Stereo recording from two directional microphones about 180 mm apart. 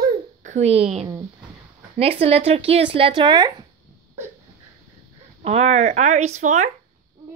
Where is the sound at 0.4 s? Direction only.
40° right (ahead or behind).